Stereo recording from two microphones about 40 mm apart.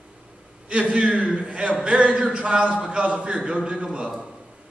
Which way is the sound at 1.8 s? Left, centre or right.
Right.